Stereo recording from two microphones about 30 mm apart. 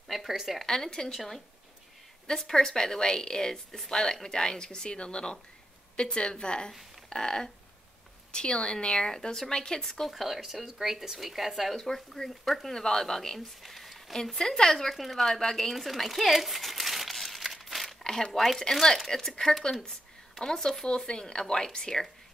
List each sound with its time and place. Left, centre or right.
0.1 s a sound: centre
0.6 s speech: centre
1.1 s a woman's voice: centre; by 6.7 s left
7.1 s speech: centre
8.3 s speech: left
10.0 s speech: centre
10.4 s speech: centre
12.7 s speech: centre
13.6 s a sound: centre
14.3 s speech: centre
14.9 s speech: centre
15.7 s crumpling: centre
18.4 s speech: centre
20.3 s speech: centre